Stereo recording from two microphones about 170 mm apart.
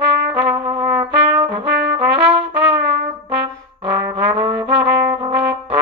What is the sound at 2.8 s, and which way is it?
Trumpet, 75° right (ahead or behind).